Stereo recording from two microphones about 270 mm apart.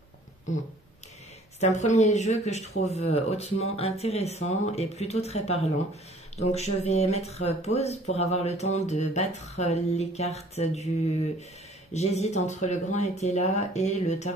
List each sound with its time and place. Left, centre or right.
1.6 s speech: left
11.9 s speech: left